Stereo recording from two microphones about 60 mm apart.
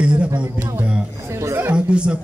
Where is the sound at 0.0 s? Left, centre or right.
Centre.